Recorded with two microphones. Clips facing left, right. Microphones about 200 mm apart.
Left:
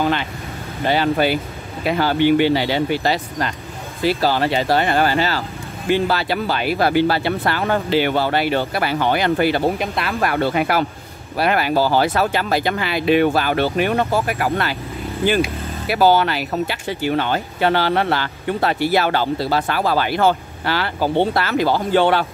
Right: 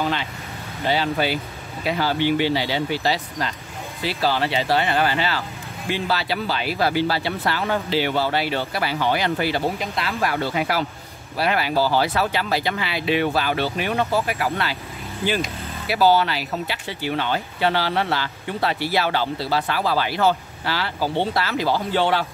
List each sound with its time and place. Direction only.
0.0 s speech: 55° left (ahead or behind)
15.9 s speech: 50° left (ahead or behind)